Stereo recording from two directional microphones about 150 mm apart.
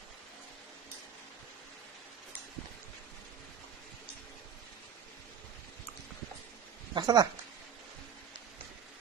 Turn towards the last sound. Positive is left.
turn(degrees=-30)  # may be behind; listen again after turning